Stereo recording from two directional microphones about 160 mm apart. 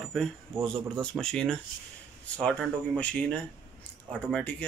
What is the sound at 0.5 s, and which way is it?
Speech, 5° left (ahead or behind).